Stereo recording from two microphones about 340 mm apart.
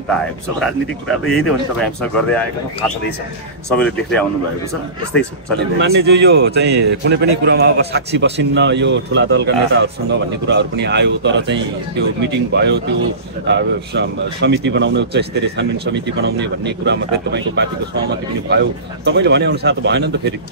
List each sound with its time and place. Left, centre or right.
0.6 s speech: centre
3.7 s speech: centre
5.6 s a man's voice: right